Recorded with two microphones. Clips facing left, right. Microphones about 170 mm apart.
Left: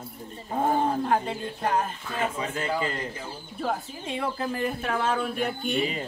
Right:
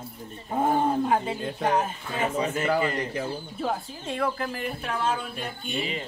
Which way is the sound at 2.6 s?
70° right (ahead or behind).